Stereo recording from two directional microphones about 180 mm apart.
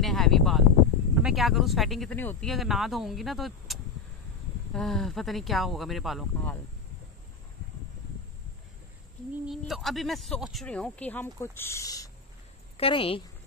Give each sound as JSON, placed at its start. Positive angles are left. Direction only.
{"t": 0.0, "sound": "a sound", "side_deg": 0}
{"t": 1.2, "sound": "speech", "side_deg": 0}
{"t": 2.5, "sound": "speech", "side_deg": 0}
{"t": 9.5, "sound": "speech", "side_deg": 0}
{"t": 12.7, "sound": "a woman's voice", "side_deg": 30}